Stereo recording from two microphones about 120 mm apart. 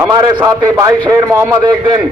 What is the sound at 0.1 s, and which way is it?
Speech, 35° right (ahead or behind).